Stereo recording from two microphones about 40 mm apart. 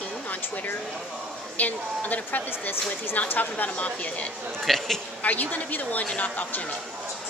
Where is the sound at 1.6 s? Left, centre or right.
Left.